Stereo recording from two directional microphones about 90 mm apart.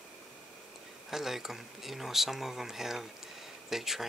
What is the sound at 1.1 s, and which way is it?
Speech, 5° right (ahead or behind).